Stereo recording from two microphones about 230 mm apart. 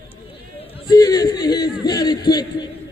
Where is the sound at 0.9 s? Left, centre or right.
Centre.